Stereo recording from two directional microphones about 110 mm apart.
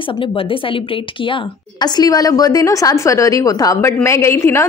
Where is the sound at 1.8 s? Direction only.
35° left (ahead or behind).